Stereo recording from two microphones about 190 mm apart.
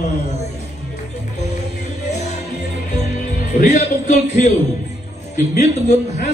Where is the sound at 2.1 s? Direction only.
40° left (ahead or behind).